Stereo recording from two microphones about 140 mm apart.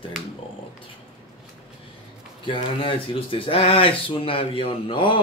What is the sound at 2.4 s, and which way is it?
Speech, 40° left (ahead or behind).